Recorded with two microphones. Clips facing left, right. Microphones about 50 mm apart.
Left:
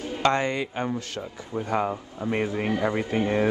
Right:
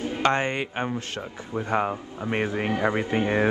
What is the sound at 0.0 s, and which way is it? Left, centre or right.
A man's voice, right.